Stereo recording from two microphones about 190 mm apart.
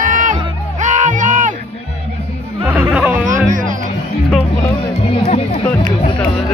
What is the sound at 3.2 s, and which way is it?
Music, 45° right (ahead or behind).